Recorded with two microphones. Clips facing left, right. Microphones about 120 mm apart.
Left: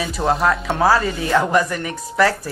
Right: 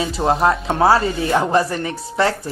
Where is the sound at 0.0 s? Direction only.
30° right (ahead or behind).